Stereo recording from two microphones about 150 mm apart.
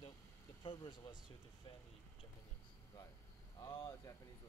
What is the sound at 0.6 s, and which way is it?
Speech, 35° left (ahead or behind).